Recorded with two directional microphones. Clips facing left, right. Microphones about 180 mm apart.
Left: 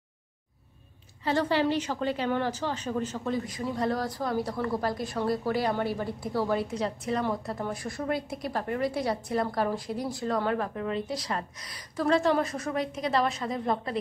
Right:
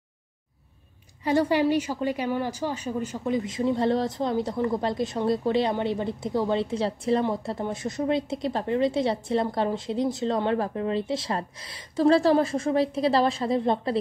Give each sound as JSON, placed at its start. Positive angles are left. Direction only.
{"t": 1.2, "sound": "a woman's voice", "side_deg": -15}